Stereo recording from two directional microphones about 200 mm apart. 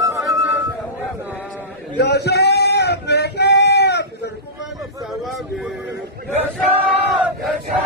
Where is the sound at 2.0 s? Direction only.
55° left (ahead or behind).